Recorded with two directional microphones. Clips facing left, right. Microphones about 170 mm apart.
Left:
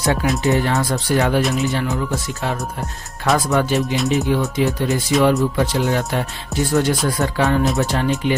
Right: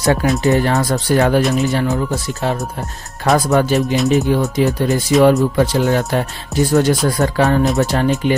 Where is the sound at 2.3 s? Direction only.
35° right (ahead or behind).